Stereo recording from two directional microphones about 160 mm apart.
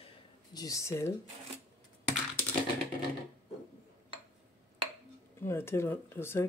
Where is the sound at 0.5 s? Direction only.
20° left (ahead or behind).